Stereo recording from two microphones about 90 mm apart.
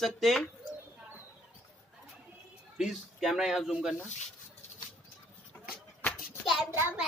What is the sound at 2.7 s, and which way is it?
Speech, 5° right (ahead or behind).